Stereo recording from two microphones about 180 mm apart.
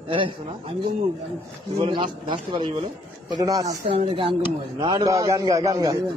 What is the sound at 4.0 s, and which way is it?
Speech, 30° right (ahead or behind).